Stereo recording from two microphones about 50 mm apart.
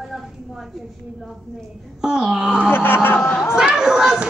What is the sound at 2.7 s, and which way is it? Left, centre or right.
Speech, left.